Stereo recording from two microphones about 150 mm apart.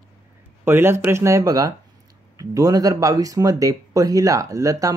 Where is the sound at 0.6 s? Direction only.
15° right (ahead or behind).